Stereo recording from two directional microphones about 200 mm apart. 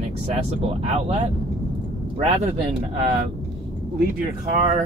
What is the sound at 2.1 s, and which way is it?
Speech, 35° right (ahead or behind).